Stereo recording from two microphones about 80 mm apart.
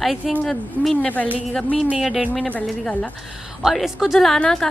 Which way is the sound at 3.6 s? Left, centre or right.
Centre.